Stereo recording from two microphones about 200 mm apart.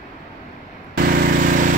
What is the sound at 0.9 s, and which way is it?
Vehicle, 50° right (ahead or behind).